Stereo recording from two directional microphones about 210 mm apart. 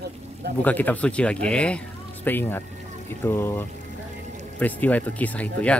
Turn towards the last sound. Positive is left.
turn(degrees=5)  # may be behind; listen again after turning